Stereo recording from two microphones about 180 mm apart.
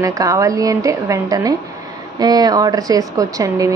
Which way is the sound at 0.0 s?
20° right (ahead or behind).